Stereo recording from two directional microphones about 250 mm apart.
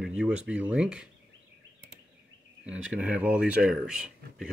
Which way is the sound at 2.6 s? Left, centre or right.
Centre.